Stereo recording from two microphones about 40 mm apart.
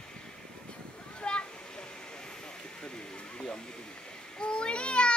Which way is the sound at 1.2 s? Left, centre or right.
Left.